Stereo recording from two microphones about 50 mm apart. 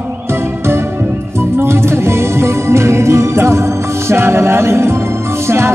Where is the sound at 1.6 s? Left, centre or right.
Right.